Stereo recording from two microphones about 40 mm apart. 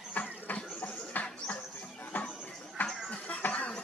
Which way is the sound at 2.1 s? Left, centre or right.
Left.